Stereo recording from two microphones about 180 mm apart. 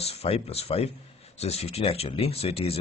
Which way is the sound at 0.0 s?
35° left (ahead or behind).